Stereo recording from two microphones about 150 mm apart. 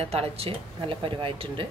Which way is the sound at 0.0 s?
40° right (ahead or behind).